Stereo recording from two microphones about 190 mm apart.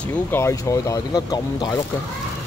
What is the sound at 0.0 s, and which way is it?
Speech, 10° left (ahead or behind).